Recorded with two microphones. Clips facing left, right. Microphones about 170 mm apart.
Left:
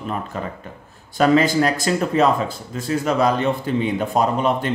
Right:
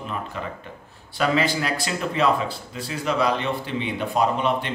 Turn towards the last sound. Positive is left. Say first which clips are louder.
# left 3 dB
turn(degrees=45)  # may be behind; listen again after turning